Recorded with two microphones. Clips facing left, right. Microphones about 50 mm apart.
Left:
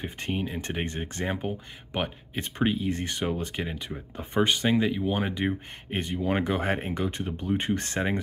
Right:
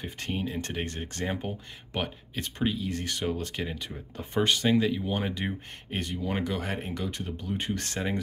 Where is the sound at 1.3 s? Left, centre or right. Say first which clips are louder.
Left 2 dB; centre.